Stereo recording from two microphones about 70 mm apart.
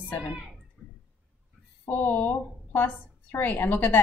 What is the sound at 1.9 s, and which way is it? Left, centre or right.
A woman's voice, left.